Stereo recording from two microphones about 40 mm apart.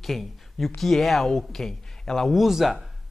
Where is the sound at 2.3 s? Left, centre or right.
Centre.